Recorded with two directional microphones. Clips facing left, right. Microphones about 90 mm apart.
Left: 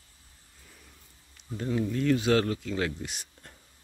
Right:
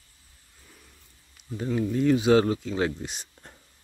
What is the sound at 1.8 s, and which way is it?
Speech, 20° right (ahead or behind).